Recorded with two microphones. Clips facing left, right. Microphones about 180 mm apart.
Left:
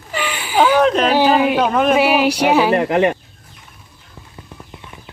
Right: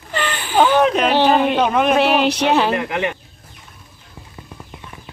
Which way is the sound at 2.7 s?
40° left (ahead or behind).